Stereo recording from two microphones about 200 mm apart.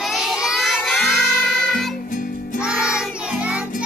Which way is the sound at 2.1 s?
40° left (ahead or behind).